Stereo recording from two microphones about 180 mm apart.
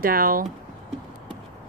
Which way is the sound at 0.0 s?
55° right (ahead or behind).